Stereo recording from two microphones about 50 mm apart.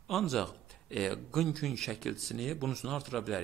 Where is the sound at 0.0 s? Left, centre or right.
Centre.